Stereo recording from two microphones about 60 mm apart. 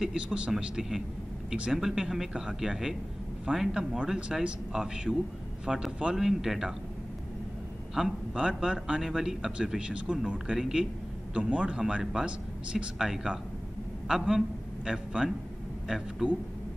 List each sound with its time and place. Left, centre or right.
0.0 s speech: centre
7.9 s speech: centre
12.0 s speech: centre